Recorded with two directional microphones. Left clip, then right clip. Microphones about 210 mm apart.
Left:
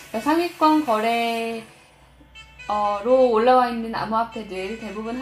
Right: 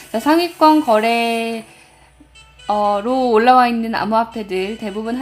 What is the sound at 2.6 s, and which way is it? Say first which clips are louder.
Speech: right 5 dB; 30° right (ahead or behind).